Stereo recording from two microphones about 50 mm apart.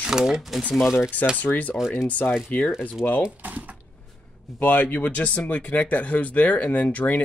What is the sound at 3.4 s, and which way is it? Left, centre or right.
Speech, right.